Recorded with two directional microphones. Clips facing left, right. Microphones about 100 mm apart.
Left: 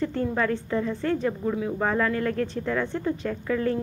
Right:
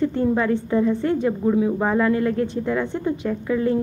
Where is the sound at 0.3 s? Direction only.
20° right (ahead or behind).